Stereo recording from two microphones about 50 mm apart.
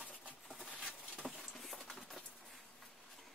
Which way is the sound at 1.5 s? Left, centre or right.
Centre.